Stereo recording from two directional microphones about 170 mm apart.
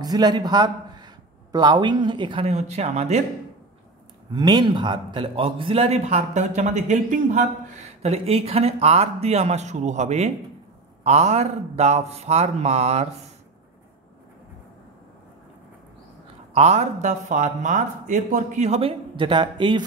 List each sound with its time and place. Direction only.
0.0 s a man's voice: 25° right (ahead or behind); by 3.3 s 40° right (ahead or behind)
4.3 s speech: 25° right (ahead or behind)
16.5 s speech: 40° right (ahead or behind)